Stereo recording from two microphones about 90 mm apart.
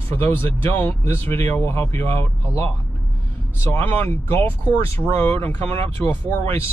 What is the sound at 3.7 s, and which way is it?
Speech, 20° left (ahead or behind).